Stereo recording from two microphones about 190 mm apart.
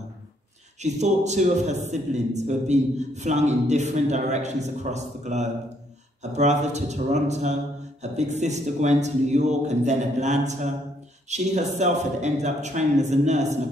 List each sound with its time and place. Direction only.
0.8 s a man's voice: 35° right (ahead or behind)